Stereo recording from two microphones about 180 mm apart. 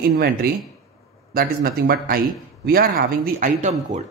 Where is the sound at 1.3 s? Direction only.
55° right (ahead or behind).